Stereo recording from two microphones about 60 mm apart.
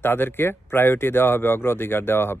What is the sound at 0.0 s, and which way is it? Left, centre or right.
Speech, left.